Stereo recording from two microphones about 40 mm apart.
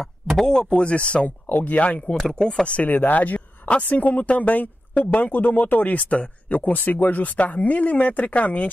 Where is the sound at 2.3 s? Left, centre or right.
Centre.